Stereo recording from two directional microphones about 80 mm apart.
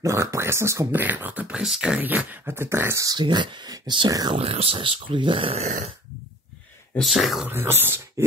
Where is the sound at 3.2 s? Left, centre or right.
Right.